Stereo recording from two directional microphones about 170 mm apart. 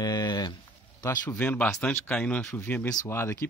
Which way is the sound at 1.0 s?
20° left (ahead or behind).